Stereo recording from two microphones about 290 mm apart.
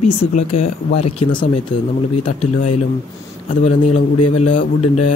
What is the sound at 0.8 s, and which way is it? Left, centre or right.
Speech, left.